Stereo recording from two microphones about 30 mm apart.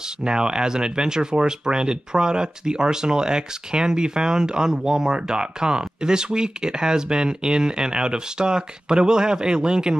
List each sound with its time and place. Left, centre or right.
0.2 s speech: right